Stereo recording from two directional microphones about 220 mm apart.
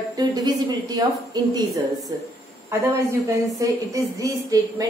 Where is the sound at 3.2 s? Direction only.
15° right (ahead or behind).